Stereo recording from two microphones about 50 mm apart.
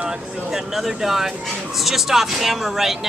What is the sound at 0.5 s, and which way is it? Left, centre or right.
Speech, centre.